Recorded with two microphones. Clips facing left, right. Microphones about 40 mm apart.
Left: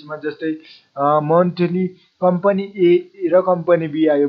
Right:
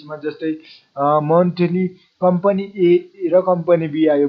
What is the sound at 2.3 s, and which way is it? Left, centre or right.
Speech, centre.